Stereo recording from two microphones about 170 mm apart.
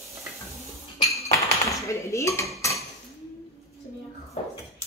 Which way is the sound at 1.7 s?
15° left (ahead or behind).